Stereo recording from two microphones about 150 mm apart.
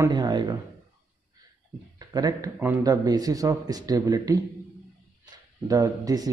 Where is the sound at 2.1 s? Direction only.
25° right (ahead or behind).